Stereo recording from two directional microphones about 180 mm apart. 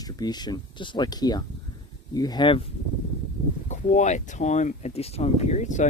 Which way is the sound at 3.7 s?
40° left (ahead or behind).